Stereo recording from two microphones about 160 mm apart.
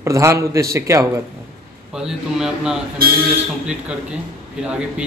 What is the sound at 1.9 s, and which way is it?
Speech, 5° right (ahead or behind).